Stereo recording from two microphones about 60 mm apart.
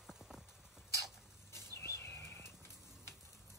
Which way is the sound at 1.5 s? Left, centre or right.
Left.